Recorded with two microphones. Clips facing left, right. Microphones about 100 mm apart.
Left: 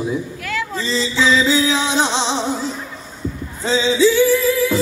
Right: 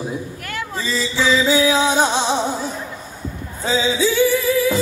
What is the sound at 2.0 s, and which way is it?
Music, 10° right (ahead or behind).